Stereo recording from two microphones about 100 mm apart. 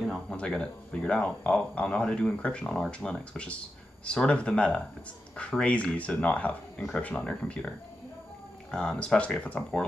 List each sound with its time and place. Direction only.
0.0 s a sound: centre (ahead or behind)
0.4 s speech: 10° left (ahead or behind)
8.7 s speech: 10° left (ahead or behind)